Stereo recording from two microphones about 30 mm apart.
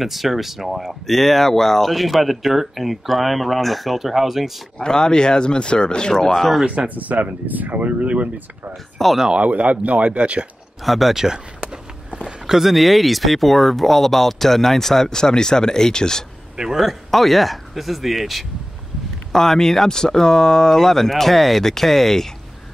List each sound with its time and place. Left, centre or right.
0.0 s speech: centre
1.0 s speech: centre
4.8 s speech: left
6.3 s speech: centre
7.0 s speech: right
9.0 s speech: centre
9.4 s speech: right
10.8 s speech: centre
11.3 s a sound: right
12.4 s speech: centre
12.7 s speech: centre; by 16.3 s left
16.5 s a man's voice: right
17.1 s speech: centre
19.3 s speech: centre